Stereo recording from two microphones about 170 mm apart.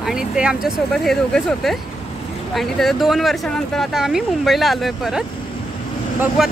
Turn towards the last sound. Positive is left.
turn(degrees=-5)  # may be behind; listen again after turning